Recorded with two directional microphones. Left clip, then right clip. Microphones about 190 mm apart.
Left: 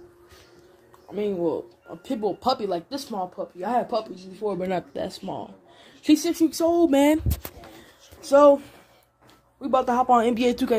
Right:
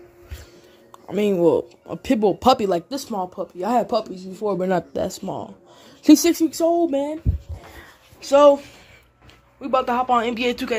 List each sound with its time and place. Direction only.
1.1 s speech: 55° right (ahead or behind); by 5.5 s 30° right (ahead or behind)
6.0 s speech: 45° right (ahead or behind)
6.4 s a sound: 10° right (ahead or behind)
6.8 s speech: 25° left (ahead or behind)
8.3 s speech: 15° left (ahead or behind)
10.0 s speech: 35° left (ahead or behind)